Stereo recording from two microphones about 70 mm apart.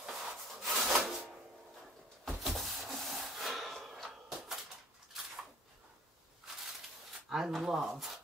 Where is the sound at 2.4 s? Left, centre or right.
Centre.